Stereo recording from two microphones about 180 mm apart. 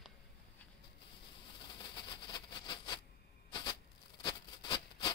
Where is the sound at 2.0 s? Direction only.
25° left (ahead or behind).